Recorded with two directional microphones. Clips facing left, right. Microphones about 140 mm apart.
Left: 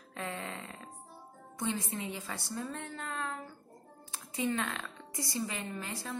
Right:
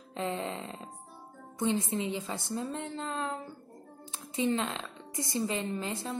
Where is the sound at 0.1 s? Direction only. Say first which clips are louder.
Right 6 dB; 25° right (ahead or behind).